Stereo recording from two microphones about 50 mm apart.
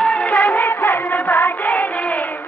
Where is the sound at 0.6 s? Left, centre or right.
Left.